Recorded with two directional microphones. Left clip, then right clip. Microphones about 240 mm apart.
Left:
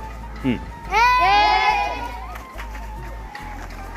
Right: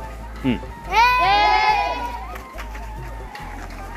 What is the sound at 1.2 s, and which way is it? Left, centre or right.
Child singing, left.